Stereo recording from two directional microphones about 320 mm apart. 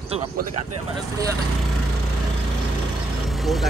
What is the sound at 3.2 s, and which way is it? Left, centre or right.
Vehicle, centre.